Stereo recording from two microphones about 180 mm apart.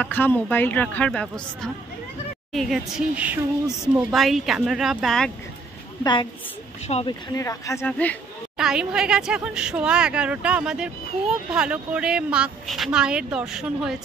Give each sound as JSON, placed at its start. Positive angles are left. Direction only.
{"t": 0.0, "sound": "a woman's voice", "side_deg": 10}
{"t": 6.9, "sound": "speech", "side_deg": 35}
{"t": 7.3, "sound": "speech", "side_deg": 15}
{"t": 8.5, "sound": "a woman's voice", "side_deg": -5}